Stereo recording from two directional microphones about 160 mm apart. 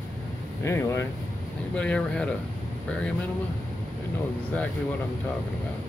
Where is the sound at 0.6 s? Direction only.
15° left (ahead or behind).